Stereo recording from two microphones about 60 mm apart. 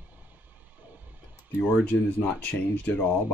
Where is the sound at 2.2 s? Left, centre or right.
Left.